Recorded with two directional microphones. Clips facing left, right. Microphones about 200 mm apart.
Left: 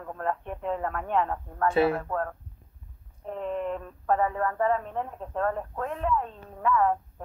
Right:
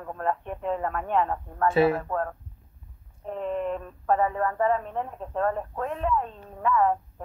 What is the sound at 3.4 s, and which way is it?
Speech, 20° right (ahead or behind).